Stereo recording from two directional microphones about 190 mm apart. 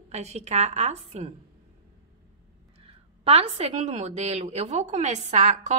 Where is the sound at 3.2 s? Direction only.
35° right (ahead or behind).